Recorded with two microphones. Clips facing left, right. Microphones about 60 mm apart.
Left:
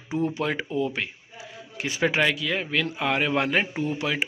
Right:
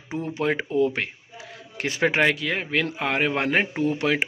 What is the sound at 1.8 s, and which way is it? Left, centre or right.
Speech, right.